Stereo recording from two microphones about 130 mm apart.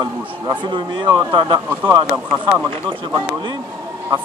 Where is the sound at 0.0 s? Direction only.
35° right (ahead or behind).